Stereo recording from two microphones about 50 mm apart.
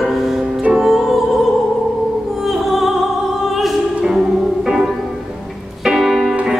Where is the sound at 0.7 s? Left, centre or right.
Centre.